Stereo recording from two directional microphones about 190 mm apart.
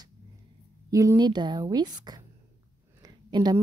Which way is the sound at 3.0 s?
20° right (ahead or behind).